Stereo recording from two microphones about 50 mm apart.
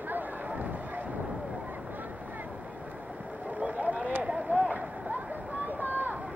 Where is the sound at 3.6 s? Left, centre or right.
Right.